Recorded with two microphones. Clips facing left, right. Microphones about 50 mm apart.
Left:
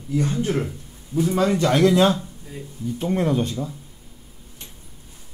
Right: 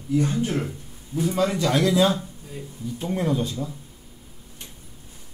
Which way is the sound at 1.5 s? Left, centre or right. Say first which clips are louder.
Left 4 dB; left.